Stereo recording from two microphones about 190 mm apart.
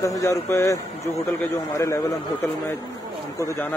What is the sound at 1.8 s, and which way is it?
A man's voice, 15° left (ahead or behind).